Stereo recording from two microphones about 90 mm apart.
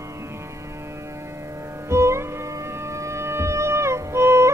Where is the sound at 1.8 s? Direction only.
30° right (ahead or behind).